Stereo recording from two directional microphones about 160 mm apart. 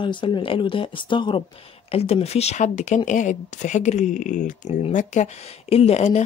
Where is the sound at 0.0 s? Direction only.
30° left (ahead or behind).